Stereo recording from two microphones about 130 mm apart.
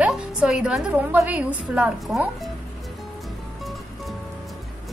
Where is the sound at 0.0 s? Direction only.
5° right (ahead or behind).